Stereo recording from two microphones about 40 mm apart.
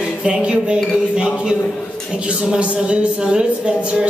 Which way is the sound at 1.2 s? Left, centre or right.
Right.